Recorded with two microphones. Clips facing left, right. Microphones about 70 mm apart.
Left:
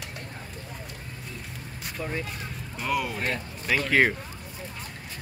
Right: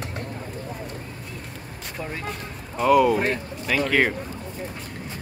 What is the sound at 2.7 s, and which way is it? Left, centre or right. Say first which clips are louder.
Speech: right 12 dB; centre.